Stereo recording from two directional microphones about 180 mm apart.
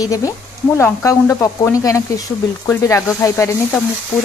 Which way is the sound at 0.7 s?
15° left (ahead or behind).